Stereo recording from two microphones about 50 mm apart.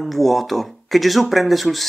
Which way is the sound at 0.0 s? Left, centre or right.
Centre.